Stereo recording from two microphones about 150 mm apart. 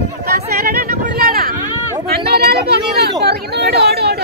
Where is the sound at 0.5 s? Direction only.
85° right.